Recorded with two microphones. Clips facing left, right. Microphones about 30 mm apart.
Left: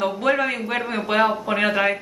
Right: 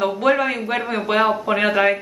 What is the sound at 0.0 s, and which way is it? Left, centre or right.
Speech, centre.